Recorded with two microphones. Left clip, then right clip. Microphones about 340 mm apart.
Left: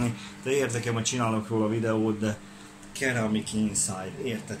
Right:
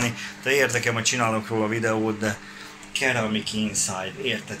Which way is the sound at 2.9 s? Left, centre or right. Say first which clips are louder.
Right 5 dB; centre.